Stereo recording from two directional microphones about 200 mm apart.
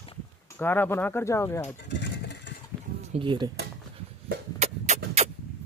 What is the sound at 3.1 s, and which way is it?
Speech, 25° right (ahead or behind).